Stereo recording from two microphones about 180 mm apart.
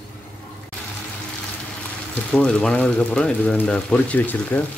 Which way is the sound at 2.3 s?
5° left (ahead or behind).